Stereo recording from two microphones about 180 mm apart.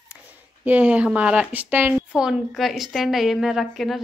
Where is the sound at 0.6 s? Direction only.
10° right (ahead or behind).